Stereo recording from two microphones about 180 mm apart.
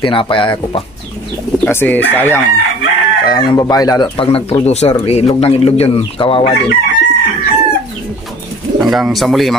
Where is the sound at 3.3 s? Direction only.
20° left (ahead or behind).